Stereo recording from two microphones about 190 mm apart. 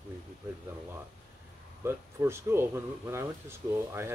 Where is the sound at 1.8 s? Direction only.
15° right (ahead or behind).